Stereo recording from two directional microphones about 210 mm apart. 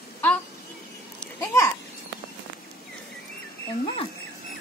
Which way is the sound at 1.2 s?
10° left (ahead or behind).